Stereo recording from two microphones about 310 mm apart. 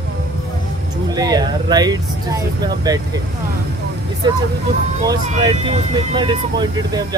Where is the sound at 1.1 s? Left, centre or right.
Centre.